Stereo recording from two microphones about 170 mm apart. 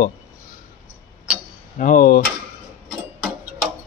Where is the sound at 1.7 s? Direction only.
50° left (ahead or behind).